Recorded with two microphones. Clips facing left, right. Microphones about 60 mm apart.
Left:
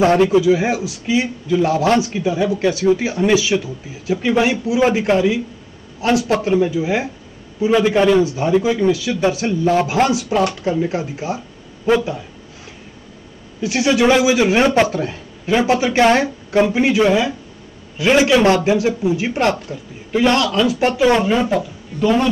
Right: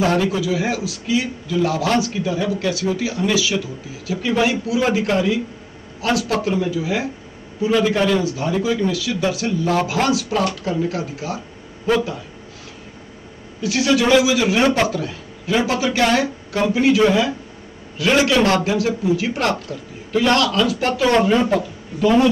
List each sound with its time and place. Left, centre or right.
0.0 s a man's voice: left
2.2 s speech: centre
2.6 s a man's voice: left
4.2 s a man's voice: centre
13.6 s a man's voice: left; by 22.3 s centre